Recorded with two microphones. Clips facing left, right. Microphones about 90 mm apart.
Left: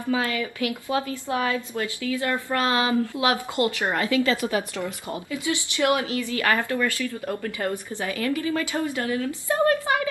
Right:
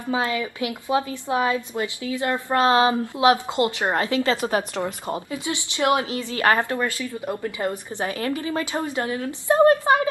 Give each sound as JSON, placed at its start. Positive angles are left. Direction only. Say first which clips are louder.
{"t": 0.1, "sound": "a woman's voice", "louder": "right 1 dB", "side_deg": -25}